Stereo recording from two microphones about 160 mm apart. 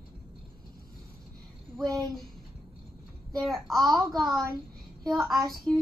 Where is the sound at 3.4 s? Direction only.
Centre (ahead or behind).